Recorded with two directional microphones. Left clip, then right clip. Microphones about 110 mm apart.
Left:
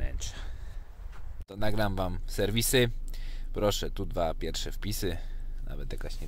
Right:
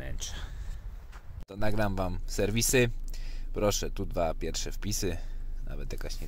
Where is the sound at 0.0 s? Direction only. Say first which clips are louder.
Right 2 dB; 5° right (ahead or behind).